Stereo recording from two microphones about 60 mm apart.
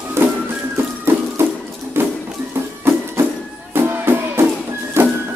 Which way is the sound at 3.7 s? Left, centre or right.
Right.